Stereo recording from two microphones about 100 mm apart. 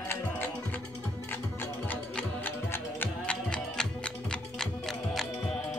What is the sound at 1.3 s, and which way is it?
Music, 20° left (ahead or behind).